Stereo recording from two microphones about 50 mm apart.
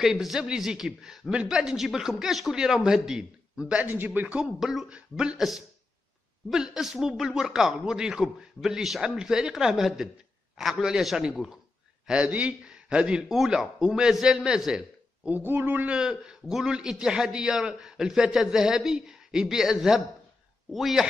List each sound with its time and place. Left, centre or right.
0.0 s a man's voice: centre
3.8 s a man's voice: right
4.8 s speech: right
6.5 s a man's voice: centre
12.3 s a man's voice: right
13.3 s a man's voice: centre
15.2 s a man's voice: right
15.9 s a man's voice: centre